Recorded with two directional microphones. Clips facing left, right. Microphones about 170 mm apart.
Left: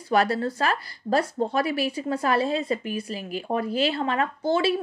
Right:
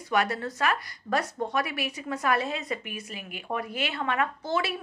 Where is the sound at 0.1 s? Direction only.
30° left (ahead or behind).